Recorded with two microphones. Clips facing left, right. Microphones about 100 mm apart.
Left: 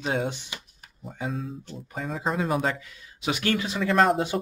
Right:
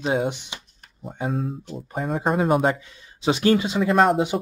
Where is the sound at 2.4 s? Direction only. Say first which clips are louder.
Right 7 dB; 35° right (ahead or behind).